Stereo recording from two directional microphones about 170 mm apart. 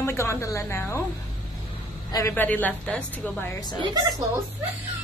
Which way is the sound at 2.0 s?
15° left (ahead or behind).